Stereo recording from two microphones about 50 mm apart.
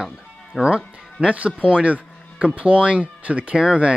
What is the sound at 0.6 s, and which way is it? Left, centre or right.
Speech, right.